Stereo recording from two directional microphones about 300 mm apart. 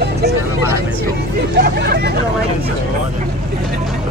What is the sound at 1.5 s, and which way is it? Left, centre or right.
Hubbub, right.